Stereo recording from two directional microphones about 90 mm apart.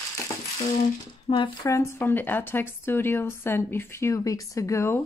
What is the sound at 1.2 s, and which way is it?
Speech, 70° left (ahead or behind).